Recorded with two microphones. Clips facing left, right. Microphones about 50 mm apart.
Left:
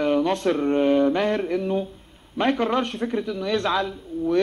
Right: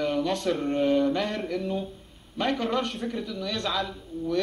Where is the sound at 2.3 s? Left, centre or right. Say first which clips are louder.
Left 5 dB; left.